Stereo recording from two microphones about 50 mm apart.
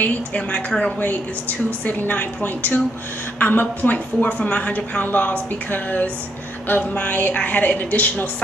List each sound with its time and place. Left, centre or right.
0.0 s a woman's voice: left